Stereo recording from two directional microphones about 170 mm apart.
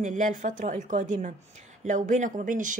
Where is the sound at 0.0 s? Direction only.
45° right (ahead or behind).